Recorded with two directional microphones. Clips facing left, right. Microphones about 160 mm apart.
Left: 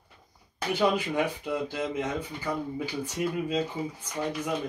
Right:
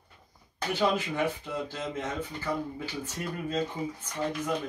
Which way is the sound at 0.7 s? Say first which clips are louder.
Left 2 dB; 15° left (ahead or behind).